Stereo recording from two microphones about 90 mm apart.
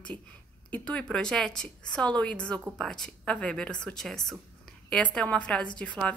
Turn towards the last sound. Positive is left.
turn(degrees=15)  # may be behind; listen again after turning